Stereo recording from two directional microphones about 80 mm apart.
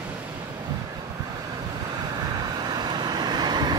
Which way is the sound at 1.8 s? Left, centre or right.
Right.